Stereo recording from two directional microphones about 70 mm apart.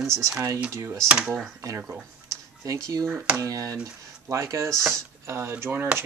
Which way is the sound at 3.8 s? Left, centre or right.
Right.